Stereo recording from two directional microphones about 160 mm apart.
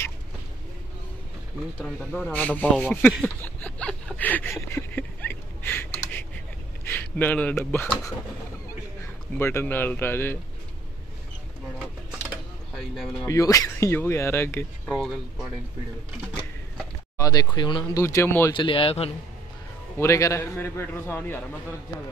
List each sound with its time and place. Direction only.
1.8 s a man's voice: 5° left (ahead or behind)
3.4 s a sound: 10° left (ahead or behind)
6.8 s a man's voice: 10° left (ahead or behind)
12.7 s speech: centre (ahead or behind)
13.3 s a man's voice: 20° left (ahead or behind)
14.9 s speech: centre (ahead or behind)
17.2 s speech: 25° left (ahead or behind)
18.0 s a man's voice: 15° left (ahead or behind)
18.5 s speech: 30° left (ahead or behind)
20.0 s a man's voice: 20° left (ahead or behind)